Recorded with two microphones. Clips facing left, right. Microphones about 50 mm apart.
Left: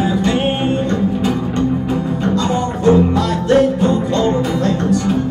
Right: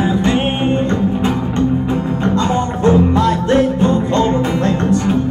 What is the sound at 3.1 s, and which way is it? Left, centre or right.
Music, right.